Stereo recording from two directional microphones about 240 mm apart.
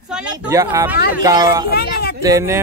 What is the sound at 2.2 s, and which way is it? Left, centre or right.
Speech, centre.